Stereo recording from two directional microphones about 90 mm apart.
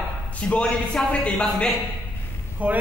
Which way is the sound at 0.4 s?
10° left (ahead or behind).